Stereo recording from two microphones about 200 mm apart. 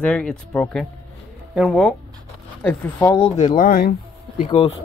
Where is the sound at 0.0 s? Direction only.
5° left (ahead or behind).